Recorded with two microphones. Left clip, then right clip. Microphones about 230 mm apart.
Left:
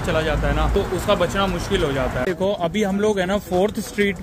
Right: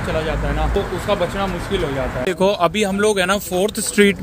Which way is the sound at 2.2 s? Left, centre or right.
Centre.